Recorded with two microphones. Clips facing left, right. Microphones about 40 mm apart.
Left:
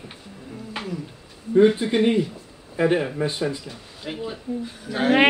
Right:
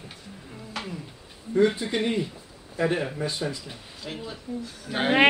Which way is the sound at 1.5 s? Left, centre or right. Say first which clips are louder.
Left 6 dB; left.